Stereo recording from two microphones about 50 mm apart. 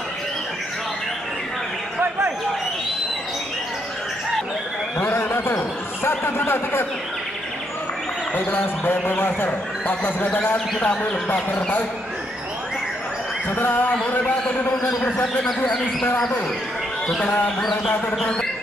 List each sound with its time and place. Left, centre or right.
4.9 s a sound: left
6.0 s speech: left
8.5 s speech: left
9.5 s speech: left
11.5 s speech: left
13.6 s speech: left
17.6 s speech: centre